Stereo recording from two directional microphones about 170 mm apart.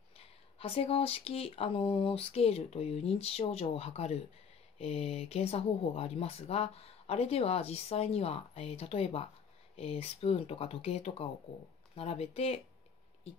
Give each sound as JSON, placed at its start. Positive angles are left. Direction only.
{"t": 0.2, "sound": "speech", "side_deg": 35}